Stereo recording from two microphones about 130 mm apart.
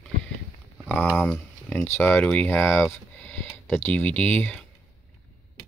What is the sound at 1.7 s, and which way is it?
Speech, 15° left (ahead or behind).